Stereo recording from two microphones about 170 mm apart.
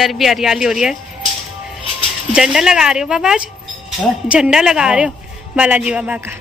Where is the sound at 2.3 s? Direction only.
5° right (ahead or behind).